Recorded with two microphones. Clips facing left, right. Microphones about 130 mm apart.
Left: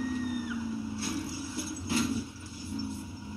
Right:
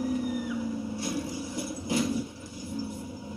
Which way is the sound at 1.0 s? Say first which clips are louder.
Right 3 dB; 15° right (ahead or behind).